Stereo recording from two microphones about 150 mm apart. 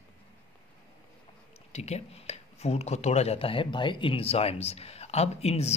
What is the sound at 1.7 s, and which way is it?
Speech, 45° left (ahead or behind).